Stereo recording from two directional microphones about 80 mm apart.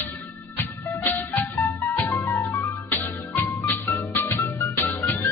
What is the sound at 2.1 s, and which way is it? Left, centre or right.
Music, left.